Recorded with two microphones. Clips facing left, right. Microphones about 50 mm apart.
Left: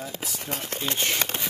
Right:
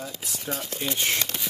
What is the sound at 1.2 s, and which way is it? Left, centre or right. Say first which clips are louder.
Speech: left 3 dB; left.